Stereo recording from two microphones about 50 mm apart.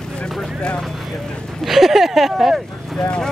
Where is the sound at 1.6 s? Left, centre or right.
Centre.